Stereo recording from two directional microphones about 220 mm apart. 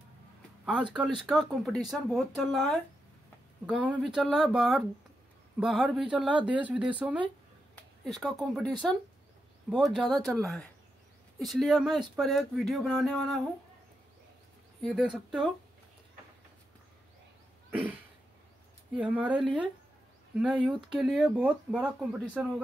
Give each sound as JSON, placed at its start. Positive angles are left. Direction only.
{"t": 0.8, "sound": "speech", "side_deg": -20}
{"t": 1.2, "sound": "speech", "side_deg": 0}
{"t": 14.8, "sound": "speech", "side_deg": 0}
{"t": 17.6, "sound": "throat clearing", "side_deg": -5}
{"t": 18.9, "sound": "speech", "side_deg": -5}
{"t": 19.4, "sound": "speech", "side_deg": 5}
{"t": 20.3, "sound": "speech", "side_deg": -5}